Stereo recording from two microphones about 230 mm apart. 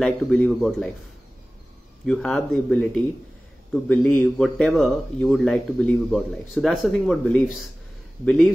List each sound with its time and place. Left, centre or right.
0.0 s speech: centre
2.0 s speech: centre